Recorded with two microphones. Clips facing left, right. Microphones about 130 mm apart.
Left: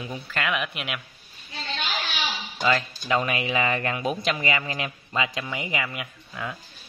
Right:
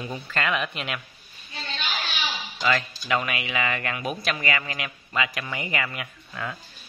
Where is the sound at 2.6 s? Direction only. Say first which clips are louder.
Left 1 dB; 25° left (ahead or behind).